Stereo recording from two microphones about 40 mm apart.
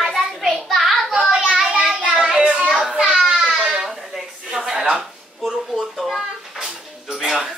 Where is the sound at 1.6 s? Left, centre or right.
Centre.